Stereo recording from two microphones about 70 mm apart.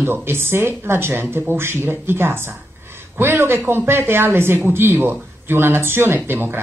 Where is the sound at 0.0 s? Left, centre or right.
Right.